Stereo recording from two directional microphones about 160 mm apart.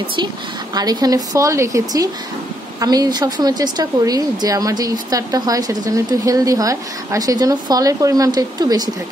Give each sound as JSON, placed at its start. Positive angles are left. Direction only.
{"t": 0.7, "sound": "speech", "side_deg": -25}